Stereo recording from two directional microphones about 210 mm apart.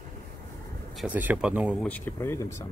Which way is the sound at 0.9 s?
5° right (ahead or behind).